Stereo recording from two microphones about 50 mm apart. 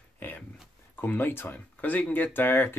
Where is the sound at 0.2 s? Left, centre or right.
Left.